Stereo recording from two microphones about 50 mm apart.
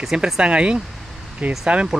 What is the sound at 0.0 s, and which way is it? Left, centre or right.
Speech, centre.